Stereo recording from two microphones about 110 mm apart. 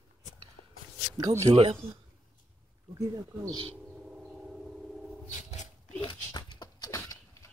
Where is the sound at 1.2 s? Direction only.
35° right (ahead or behind).